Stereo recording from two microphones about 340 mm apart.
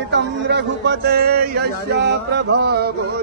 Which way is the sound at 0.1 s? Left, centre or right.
Right.